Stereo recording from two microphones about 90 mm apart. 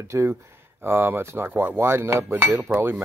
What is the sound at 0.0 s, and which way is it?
Speech, 30° right (ahead or behind).